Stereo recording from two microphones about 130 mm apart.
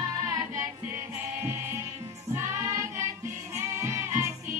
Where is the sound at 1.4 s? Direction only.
20° right (ahead or behind).